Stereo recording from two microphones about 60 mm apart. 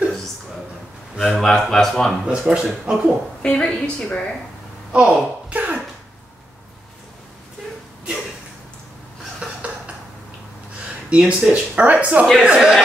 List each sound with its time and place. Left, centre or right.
1.1 s a man's voice: centre
1.4 s speech: centre
2.5 s speech: centre
3.4 s speech: centre
4.9 s a sound: right
9.4 s a sound: right
11.1 s speech: centre
12.4 s speech: centre